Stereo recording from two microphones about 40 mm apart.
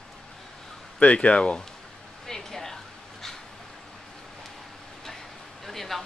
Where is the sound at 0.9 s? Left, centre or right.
Left.